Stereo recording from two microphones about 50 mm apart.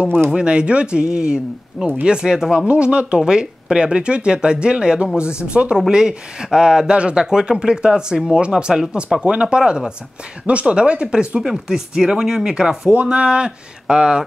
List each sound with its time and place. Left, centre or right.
0.3 s speech: centre
2.7 s speech: right
12.9 s speech: right